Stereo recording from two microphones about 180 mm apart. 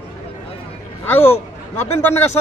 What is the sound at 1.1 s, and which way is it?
Speech, 10° left (ahead or behind).